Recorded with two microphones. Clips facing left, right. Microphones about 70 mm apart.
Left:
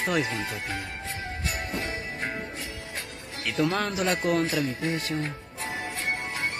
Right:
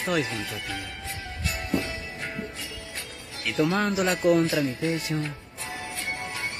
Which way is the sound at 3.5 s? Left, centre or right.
Right.